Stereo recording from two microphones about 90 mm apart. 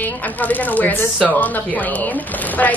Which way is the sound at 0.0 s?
20° left (ahead or behind).